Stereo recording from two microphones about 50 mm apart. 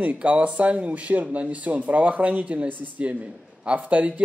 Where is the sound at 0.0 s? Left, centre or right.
Right.